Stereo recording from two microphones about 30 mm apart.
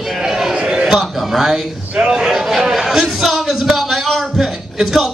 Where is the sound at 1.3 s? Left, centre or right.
Centre.